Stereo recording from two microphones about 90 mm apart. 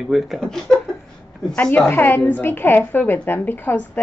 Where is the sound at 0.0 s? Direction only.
Centre (ahead or behind).